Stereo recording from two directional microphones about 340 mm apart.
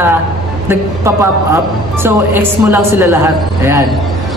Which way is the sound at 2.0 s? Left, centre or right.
Centre.